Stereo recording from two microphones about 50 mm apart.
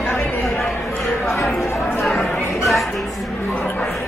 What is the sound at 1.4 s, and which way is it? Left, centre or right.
Chatter, centre.